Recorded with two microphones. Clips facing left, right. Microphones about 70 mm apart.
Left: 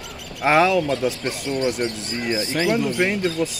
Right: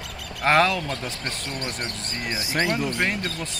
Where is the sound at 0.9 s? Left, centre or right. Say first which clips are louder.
Left 9 dB; right.